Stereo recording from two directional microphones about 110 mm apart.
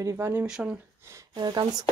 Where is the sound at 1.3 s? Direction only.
40° right (ahead or behind).